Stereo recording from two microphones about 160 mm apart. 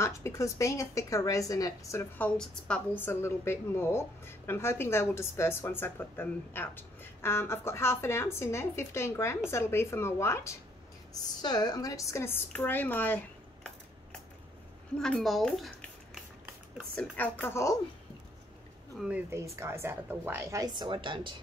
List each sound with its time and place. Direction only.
0.0 s a woman's voice: 20° left (ahead or behind)
15.0 s speech: 5° left (ahead or behind)
16.9 s a woman's voice: 10° left (ahead or behind)
18.9 s a woman's voice: 10° right (ahead or behind); by 21.4 s 30° right (ahead or behind)